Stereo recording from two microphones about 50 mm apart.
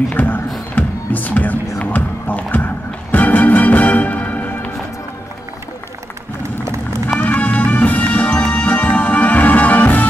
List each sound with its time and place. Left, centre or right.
0.1 s speech: left
0.7 s music: left
7.2 s music: left